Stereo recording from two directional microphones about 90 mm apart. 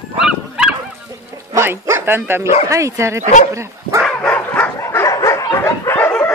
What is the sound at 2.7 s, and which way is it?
Speech, 35° right (ahead or behind).